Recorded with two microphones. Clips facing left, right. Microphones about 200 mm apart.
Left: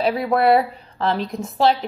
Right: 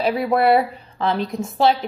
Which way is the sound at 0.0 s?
Centre (ahead or behind).